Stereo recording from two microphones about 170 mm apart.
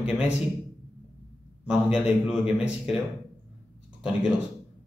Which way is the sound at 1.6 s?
5° right (ahead or behind).